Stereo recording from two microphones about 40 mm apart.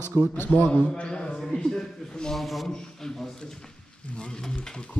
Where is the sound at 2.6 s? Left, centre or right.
Centre.